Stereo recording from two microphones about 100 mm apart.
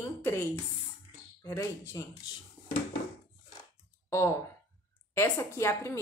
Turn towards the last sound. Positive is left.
turn(degrees=30)  # may be behind; listen again after turning